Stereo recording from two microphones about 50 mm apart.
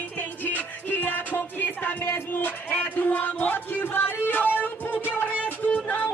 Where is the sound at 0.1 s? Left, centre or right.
Left.